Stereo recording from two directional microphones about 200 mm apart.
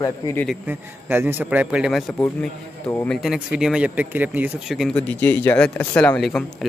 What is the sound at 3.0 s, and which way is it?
Speech, centre (ahead or behind).